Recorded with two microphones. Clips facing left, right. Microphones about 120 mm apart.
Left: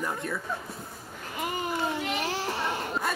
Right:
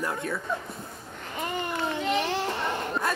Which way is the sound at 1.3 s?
5° left (ahead or behind).